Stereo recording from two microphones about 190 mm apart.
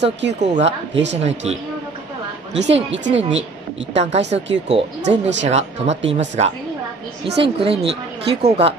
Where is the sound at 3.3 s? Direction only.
75° right (ahead or behind).